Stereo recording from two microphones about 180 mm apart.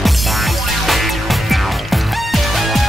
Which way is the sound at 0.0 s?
Centre (ahead or behind).